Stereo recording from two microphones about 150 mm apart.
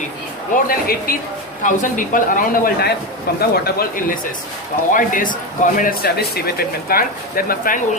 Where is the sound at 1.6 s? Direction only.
60° left (ahead or behind); by 4.2 s 80° left.